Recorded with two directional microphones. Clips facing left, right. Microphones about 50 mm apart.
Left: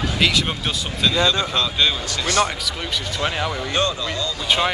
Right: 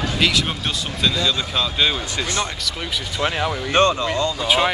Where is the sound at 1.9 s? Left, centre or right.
Right.